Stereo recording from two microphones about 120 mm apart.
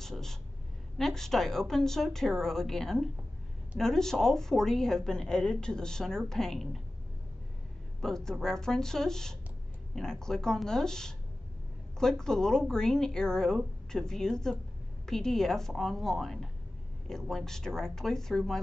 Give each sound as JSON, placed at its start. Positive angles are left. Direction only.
{"t": 0.0, "sound": "a woman's voice", "side_deg": 5}
{"t": 8.0, "sound": "a woman's voice", "side_deg": 5}